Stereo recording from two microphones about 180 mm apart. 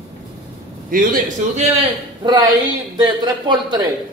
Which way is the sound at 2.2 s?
25° right (ahead or behind).